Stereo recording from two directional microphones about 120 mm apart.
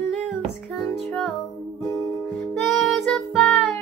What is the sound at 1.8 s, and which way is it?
Music, 35° left (ahead or behind).